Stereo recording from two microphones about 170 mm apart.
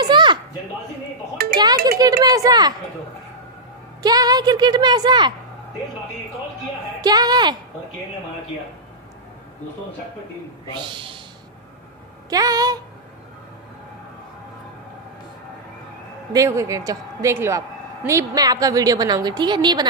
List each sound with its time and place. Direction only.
0.0 s a sound: 25° right (ahead or behind)
2.0 s a child's voice: 20° right (ahead or behind)
4.0 s a woman's voice: 25° right (ahead or behind)
7.0 s a sound: 25° right (ahead or behind)
10.7 s a woman's voice: 30° right (ahead or behind)
12.3 s a woman's voice: 20° right (ahead or behind)
16.3 s a woman's voice: 15° right (ahead or behind)